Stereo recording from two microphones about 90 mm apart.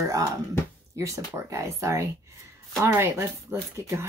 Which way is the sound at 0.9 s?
35° right (ahead or behind).